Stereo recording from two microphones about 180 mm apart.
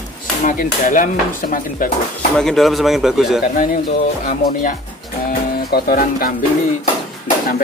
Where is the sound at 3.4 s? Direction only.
45° left (ahead or behind).